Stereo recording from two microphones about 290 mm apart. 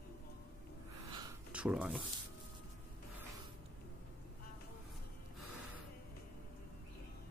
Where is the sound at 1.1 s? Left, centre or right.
Centre.